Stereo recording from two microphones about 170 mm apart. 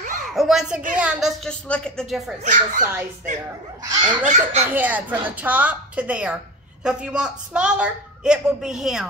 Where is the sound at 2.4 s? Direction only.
45° right (ahead or behind).